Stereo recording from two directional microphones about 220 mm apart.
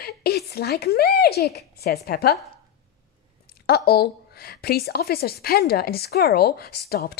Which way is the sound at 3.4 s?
45° left (ahead or behind).